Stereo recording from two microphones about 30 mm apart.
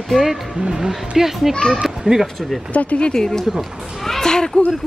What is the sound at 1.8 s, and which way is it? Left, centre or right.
Children playing, right.